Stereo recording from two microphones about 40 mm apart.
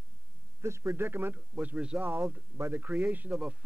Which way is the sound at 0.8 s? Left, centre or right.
Right.